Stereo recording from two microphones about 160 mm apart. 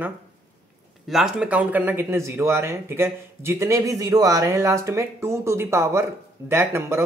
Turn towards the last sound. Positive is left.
turn(degrees=-15)  # may be behind; listen again after turning